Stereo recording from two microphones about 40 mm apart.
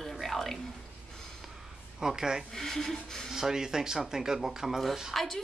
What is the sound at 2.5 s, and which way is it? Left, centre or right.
Speech, centre.